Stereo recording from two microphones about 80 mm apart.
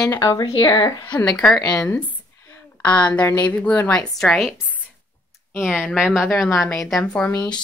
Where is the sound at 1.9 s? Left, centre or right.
Left.